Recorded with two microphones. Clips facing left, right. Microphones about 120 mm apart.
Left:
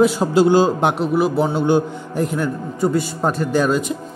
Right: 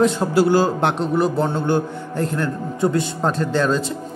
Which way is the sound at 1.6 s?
15° left (ahead or behind).